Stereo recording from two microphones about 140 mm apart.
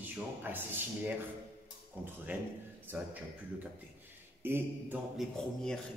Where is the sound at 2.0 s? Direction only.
15° right (ahead or behind).